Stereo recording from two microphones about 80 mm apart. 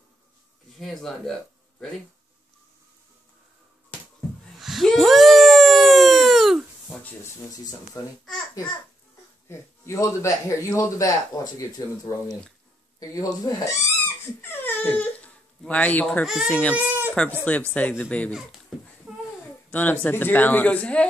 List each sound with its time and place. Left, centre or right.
0.7 s speech: centre
4.6 s a sound: centre
8.0 s a man's voice: left
9.5 s a man's voice: left
13.7 s crying: left
15.7 s speech: centre
16.7 s goat: right
17.5 s speech: centre
19.7 s speech: left